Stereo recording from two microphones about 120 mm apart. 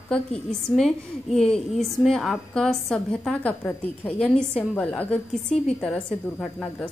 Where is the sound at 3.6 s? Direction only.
20° left (ahead or behind).